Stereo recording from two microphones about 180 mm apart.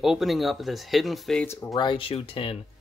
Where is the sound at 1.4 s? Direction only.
20° left (ahead or behind).